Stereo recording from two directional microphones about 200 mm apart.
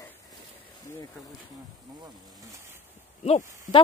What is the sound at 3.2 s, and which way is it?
Speech, 30° left (ahead or behind).